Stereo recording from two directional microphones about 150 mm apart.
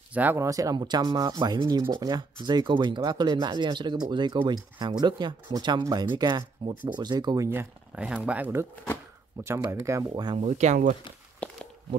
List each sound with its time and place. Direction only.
0.1 s speech: 10° right (ahead or behind)
7.9 s speech: 10° right (ahead or behind); by 10.4 s 30° right (ahead or behind)
10.4 s speech: 50° right (ahead or behind)
11.4 s a sound: 10° left (ahead or behind)